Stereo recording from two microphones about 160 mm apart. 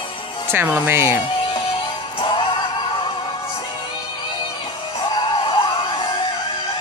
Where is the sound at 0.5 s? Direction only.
15° right (ahead or behind).